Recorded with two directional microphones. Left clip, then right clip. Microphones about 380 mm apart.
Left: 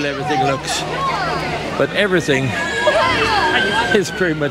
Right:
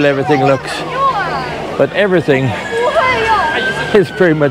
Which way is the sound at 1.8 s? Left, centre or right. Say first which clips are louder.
Right 5 dB; centre.